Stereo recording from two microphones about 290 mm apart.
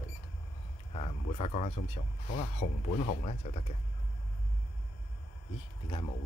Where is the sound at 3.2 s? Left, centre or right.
Left.